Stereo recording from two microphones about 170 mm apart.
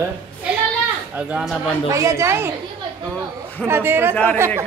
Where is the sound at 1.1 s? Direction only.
5° right (ahead or behind).